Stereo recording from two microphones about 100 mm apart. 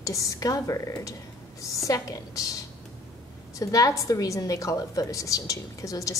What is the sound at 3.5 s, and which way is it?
A woman's voice, 35° left (ahead or behind).